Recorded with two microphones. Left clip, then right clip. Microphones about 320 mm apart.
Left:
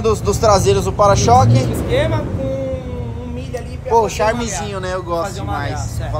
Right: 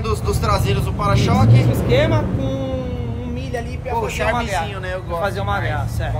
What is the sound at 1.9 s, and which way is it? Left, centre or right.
Speech, right.